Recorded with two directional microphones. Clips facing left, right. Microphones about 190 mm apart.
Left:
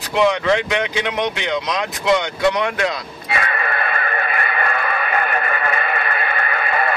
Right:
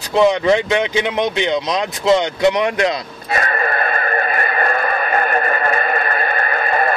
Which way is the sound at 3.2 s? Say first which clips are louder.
Right 3 dB; 40° right (ahead or behind).